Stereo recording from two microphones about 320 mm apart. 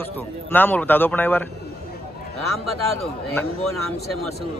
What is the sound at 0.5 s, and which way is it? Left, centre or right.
Speech, centre.